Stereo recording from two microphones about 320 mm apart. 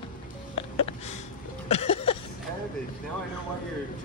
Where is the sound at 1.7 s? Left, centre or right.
Centre.